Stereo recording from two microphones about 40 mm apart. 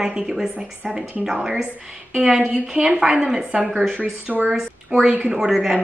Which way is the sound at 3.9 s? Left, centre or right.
Right.